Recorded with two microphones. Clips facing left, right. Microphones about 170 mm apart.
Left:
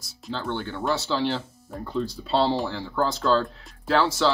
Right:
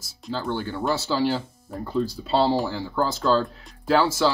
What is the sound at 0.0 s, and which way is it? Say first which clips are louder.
Speech: right 2 dB; 5° right (ahead or behind).